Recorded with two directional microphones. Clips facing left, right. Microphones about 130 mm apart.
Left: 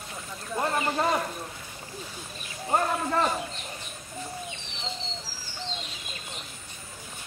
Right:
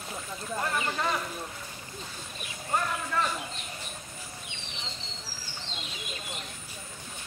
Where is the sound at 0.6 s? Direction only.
35° left (ahead or behind).